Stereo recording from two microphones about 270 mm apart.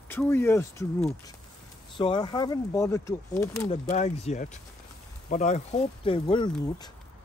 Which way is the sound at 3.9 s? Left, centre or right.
Left.